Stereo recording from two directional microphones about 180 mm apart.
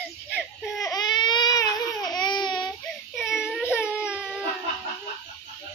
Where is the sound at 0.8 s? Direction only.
20° left (ahead or behind).